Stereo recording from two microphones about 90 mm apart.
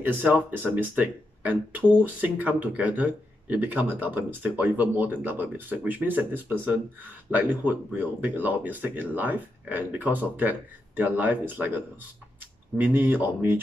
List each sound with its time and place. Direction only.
0.0 s speech: 20° right (ahead or behind)